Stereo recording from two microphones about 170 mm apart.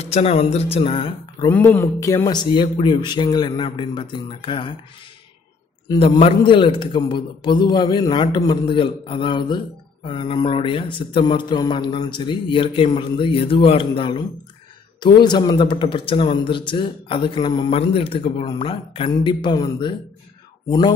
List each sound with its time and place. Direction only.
0.0 s speech: 40° left (ahead or behind)
1.5 s speech: 15° left (ahead or behind); by 4.7 s 30° left (ahead or behind)
5.9 s speech: 35° left (ahead or behind)